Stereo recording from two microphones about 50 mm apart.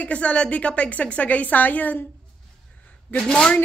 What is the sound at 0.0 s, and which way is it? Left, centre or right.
A woman's voice, left.